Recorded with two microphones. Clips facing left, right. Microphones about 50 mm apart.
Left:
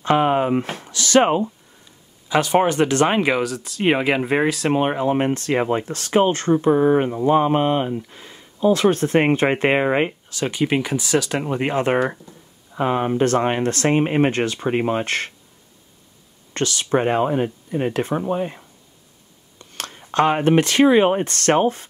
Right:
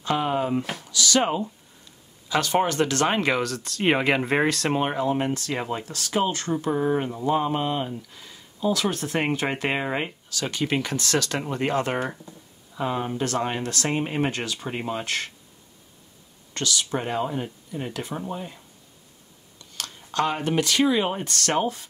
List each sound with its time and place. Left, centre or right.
0.0 s speech: left
2.2 s speech: centre; by 15.3 s left
16.5 s speech: left
19.6 s speech: left